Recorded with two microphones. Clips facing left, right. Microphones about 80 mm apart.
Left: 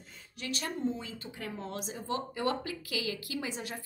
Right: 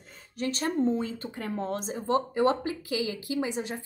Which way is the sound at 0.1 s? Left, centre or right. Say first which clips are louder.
Right 7 dB; right.